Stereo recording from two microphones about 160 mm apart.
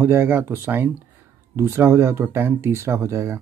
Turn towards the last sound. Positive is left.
turn(degrees=-15)  # may be behind; listen again after turning